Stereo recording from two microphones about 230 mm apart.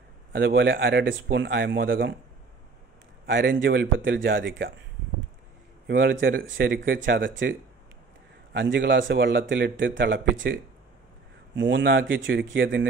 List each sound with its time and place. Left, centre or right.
0.3 s a man's voice: right
3.3 s a man's voice: right
5.9 s a man's voice: right
8.5 s a man's voice: right